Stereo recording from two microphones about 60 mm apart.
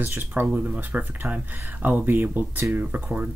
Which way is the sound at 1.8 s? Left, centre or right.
Right.